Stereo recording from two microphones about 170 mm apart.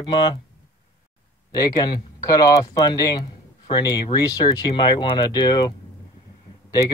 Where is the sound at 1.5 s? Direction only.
25° left (ahead or behind).